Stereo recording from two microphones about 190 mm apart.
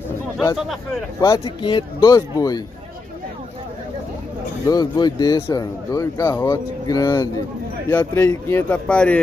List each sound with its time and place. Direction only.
1.2 s speech: 20° left (ahead or behind)
4.6 s a man's voice: 20° left (ahead or behind)